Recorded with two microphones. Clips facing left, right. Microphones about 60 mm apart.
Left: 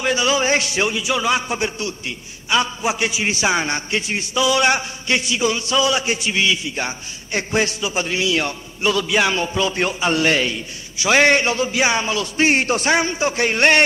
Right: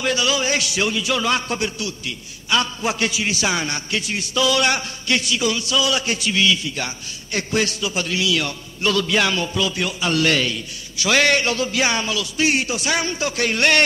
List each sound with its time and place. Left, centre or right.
0.0 s a man's voice: left
0.8 s a man's voice: centre
1.6 s a man's voice: left
2.5 s a man's voice: centre
8.8 s a man's voice: centre
12.2 s a man's voice: left
12.9 s a man's voice: left